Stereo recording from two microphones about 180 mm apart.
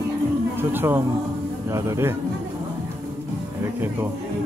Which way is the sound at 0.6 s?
10° right (ahead or behind).